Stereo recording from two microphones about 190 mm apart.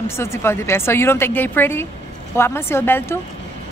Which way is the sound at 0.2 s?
15° left (ahead or behind).